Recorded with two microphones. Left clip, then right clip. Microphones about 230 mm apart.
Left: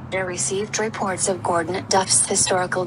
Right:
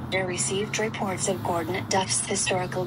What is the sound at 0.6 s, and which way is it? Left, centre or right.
Speech, left.